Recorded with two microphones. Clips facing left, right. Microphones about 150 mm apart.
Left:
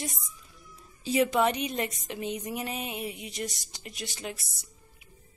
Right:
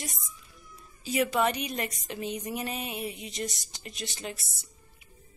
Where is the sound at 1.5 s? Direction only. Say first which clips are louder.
Left 2 dB; 25° left (ahead or behind).